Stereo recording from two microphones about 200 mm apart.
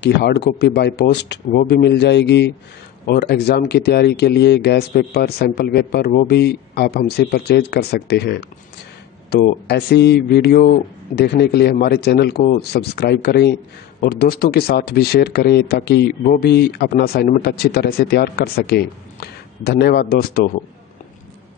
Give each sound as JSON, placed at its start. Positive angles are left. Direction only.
{"t": 0.0, "sound": "speech", "side_deg": 60}